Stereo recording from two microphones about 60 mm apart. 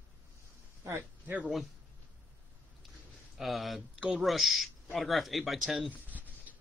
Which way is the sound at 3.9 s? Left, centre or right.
Centre.